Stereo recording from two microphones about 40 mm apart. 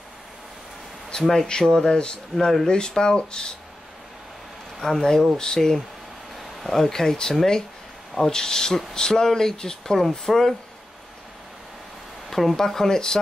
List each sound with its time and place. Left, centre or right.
1.2 s speech: centre
1.5 s speech: centre
2.3 s speech: centre
2.6 s speech: centre
4.7 s speech: centre
12.3 s speech: centre